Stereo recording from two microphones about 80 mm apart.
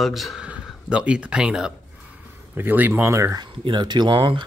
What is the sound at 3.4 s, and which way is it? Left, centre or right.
Speech, right.